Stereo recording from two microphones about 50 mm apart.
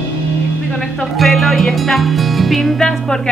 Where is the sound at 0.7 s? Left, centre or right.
Centre.